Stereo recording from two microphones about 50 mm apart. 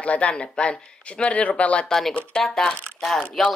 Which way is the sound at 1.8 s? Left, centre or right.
Centre.